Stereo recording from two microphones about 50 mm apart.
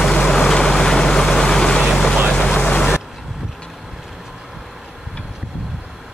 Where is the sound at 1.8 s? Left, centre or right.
Centre; by 2.8 s left.